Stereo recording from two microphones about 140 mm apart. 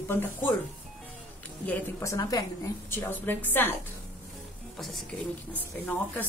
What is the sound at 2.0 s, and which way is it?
A woman's voice, 20° left (ahead or behind).